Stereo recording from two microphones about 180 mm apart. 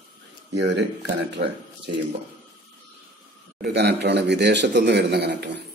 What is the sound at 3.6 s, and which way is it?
A man's voice, 70° right (ahead or behind).